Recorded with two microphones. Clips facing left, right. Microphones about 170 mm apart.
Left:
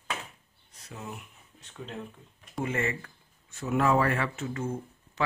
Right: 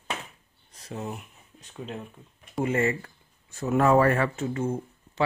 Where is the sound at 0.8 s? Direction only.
30° right (ahead or behind).